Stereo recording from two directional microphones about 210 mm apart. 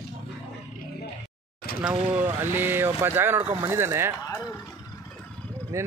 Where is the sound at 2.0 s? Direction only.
10° right (ahead or behind).